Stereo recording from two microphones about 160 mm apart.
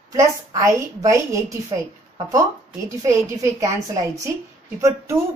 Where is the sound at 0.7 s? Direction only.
15° right (ahead or behind).